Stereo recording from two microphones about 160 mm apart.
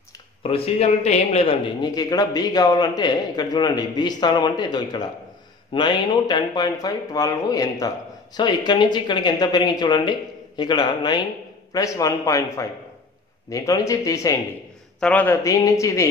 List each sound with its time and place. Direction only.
0.4 s a man's voice: 35° left (ahead or behind)
1.9 s a man's voice: 25° left (ahead or behind)
15.0 s speech: 10° left (ahead or behind)
15.4 s a man's voice: 20° left (ahead or behind)